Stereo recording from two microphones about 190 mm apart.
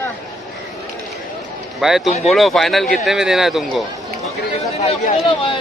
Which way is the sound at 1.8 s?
Centre (ahead or behind).